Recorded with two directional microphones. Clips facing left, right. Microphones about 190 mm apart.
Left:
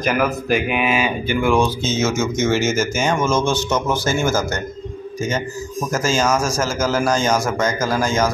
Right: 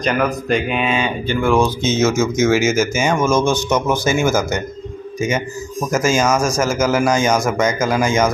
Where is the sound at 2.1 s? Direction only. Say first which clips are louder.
Right 3 dB; 10° right (ahead or behind).